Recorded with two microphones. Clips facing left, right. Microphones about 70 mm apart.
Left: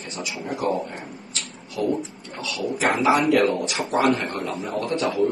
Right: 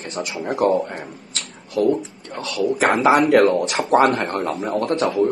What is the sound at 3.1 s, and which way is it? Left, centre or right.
A man's voice, right.